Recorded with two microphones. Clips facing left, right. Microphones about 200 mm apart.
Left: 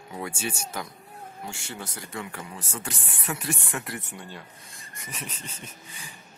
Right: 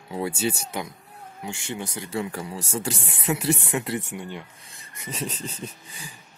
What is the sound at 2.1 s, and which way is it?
Speech, 30° right (ahead or behind).